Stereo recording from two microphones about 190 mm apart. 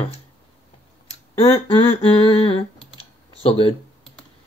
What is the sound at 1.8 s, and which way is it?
Humming, 30° left (ahead or behind).